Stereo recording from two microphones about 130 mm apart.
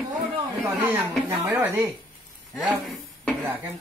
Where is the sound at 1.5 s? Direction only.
15° right (ahead or behind).